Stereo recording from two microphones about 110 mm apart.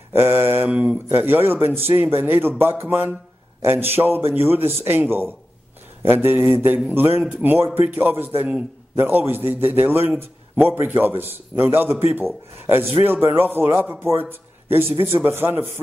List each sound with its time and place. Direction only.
0.1 s mantra: 20° right (ahead or behind)
0.7 s a man's voice: 10° right (ahead or behind)
6.0 s a man's voice: 20° right (ahead or behind)
14.3 s a sound: 20° right (ahead or behind)
14.9 s a man's voice: 60° right (ahead or behind)
15.2 s a man's voice: 20° right (ahead or behind)